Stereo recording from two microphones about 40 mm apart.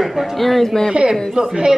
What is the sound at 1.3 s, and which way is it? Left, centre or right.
Speech, right.